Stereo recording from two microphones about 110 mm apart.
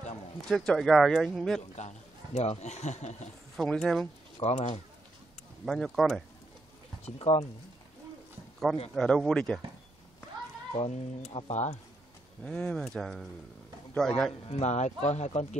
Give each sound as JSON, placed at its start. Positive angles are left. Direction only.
{"t": 0.5, "sound": "speech", "side_deg": 0}
{"t": 1.8, "sound": "speech", "side_deg": 90}
{"t": 3.5, "sound": "speech", "side_deg": 5}
{"t": 4.4, "sound": "speech", "side_deg": 75}
{"t": 5.7, "sound": "speech", "side_deg": 0}
{"t": 7.2, "sound": "speech", "side_deg": 55}
{"t": 8.9, "sound": "speech", "side_deg": 5}
{"t": 10.7, "sound": "speech", "side_deg": 70}
{"t": 12.4, "sound": "speech", "side_deg": 10}
{"t": 14.5, "sound": "speech", "side_deg": 90}